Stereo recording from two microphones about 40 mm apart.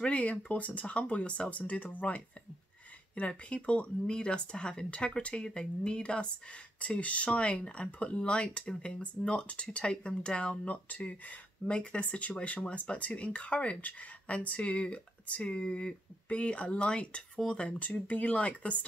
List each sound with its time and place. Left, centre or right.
0.0 s speech: left
6.8 s speech: left
10.5 s speech: left